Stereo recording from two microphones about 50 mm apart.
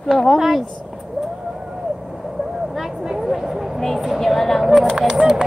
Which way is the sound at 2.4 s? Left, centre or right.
Centre.